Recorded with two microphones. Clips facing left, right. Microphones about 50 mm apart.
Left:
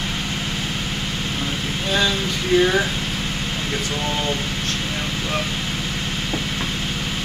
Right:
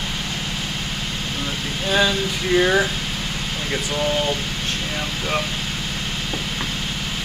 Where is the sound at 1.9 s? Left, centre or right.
Centre.